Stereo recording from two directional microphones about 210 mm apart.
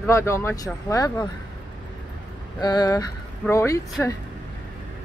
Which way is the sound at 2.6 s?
20° left (ahead or behind).